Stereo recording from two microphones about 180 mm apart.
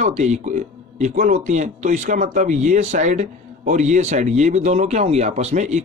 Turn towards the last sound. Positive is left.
turn(degrees=-40)  # may be behind; listen again after turning